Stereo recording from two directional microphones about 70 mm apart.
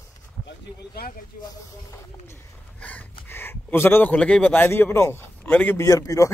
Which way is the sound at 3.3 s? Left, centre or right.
Left.